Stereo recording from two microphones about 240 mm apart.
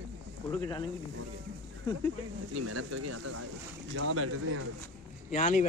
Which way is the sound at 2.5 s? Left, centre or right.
Right.